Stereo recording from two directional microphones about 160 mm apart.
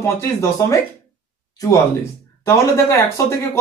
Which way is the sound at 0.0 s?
20° left (ahead or behind).